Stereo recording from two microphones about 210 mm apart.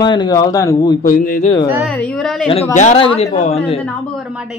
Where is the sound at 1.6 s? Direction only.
10° right (ahead or behind).